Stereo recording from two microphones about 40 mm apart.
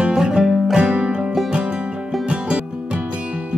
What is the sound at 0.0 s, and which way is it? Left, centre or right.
Music, centre.